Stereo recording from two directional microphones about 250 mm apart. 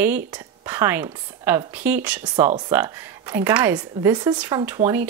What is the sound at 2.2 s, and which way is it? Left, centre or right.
Speech, centre.